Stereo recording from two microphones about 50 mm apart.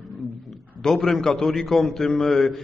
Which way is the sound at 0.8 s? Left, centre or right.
Centre.